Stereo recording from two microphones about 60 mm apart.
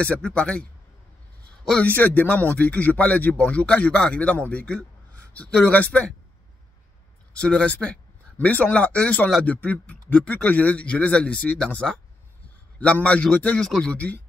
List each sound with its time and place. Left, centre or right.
0.0 s speech: centre
1.8 s speech: left
7.3 s speech: centre
12.7 s speech: left